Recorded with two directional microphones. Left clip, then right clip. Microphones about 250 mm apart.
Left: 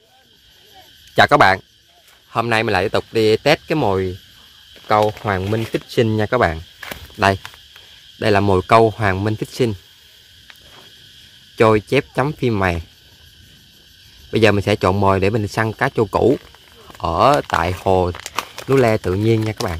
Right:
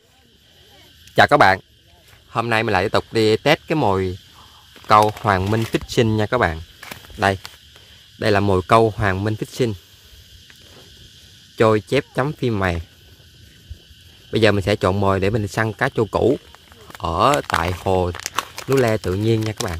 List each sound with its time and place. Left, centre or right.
1.1 s speech: centre
5.2 s speech: centre
11.5 s speech: centre
14.3 s speech: centre
18.1 s a sound: right
18.7 s speech: centre